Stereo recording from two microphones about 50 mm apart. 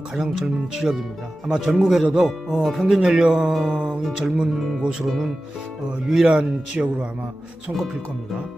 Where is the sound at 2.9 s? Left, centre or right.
Centre.